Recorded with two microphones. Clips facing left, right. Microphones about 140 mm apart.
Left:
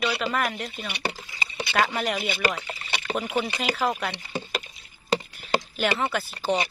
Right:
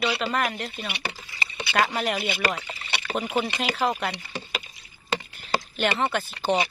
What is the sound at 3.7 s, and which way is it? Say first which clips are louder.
Speech: right 1 dB; centre (ahead or behind).